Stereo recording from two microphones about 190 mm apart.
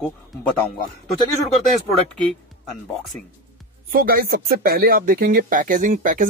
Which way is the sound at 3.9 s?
50° right (ahead or behind).